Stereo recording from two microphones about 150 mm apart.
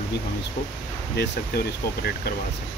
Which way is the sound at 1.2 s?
90° left.